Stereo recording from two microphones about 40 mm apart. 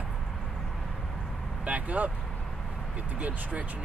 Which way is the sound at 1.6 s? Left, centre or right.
Right.